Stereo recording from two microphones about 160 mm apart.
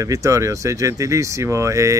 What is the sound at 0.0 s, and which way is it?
Speech, 20° right (ahead or behind).